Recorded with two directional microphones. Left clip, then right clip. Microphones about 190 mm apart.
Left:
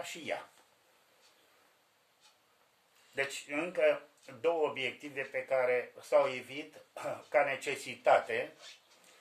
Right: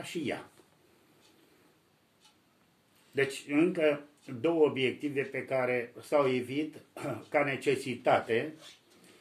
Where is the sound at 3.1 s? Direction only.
5° left (ahead or behind).